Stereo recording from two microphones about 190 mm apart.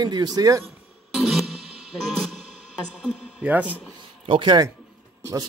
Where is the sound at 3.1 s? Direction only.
5° right (ahead or behind).